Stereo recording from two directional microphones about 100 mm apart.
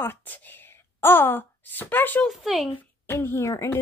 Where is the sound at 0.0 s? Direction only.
20° left (ahead or behind).